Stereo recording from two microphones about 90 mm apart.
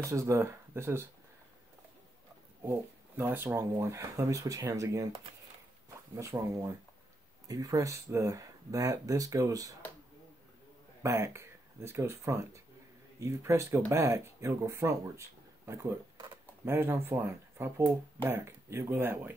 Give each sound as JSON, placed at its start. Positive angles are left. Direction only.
{"t": 0.1, "sound": "speech", "side_deg": -30}
{"t": 2.6, "sound": "speech", "side_deg": -25}
{"t": 11.0, "sound": "speech", "side_deg": -30}